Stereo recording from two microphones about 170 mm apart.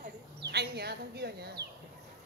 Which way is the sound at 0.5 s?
70° right (ahead or behind).